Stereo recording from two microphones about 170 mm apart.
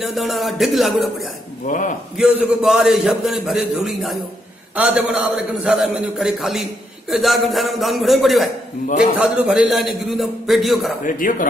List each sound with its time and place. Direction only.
0.0 s a man's voice: centre (ahead or behind)
1.7 s speech: 50° left (ahead or behind)
2.1 s a man's voice: 5° right (ahead or behind)
11.1 s speech: 55° left (ahead or behind)